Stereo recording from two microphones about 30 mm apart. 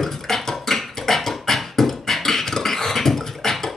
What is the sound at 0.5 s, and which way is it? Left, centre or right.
Beatboxing, centre.